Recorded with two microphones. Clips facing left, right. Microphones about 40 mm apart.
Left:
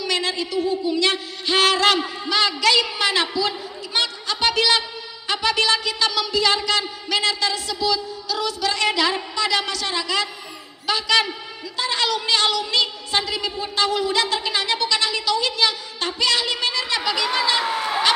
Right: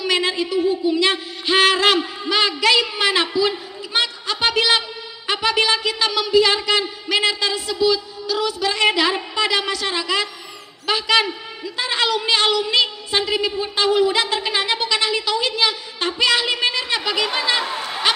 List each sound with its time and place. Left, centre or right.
0.0 s a man's voice: centre